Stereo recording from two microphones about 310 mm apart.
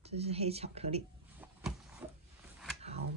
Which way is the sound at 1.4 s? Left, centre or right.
Centre.